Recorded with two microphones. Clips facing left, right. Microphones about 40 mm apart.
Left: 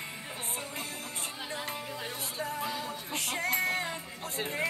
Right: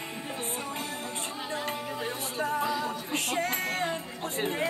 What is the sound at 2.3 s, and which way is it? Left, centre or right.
Music, right.